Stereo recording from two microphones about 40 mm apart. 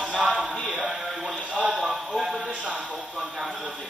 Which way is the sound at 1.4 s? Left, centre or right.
Right.